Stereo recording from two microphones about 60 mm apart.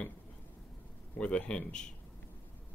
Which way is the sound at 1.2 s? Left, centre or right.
Centre.